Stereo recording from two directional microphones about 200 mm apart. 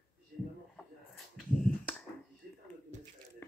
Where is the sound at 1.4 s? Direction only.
Centre (ahead or behind).